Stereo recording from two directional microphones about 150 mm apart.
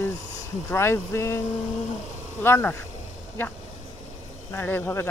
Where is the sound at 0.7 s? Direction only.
15° left (ahead or behind).